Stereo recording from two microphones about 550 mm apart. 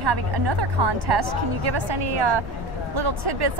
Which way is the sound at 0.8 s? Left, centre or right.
Right.